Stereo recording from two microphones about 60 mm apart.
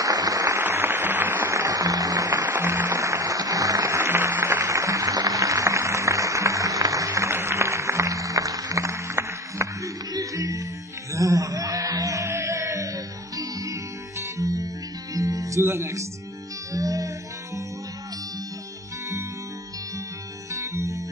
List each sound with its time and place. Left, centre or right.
0.0 s a sound: right
0.6 s a sound: right
1.5 s music: right
2.4 s music: right
10.1 s music: right
15.6 s music: right
16.7 s music: right
20.5 s music: right